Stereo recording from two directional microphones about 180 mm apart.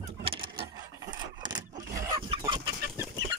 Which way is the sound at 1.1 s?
25° right (ahead or behind).